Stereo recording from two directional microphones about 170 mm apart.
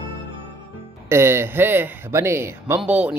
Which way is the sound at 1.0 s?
15° right (ahead or behind).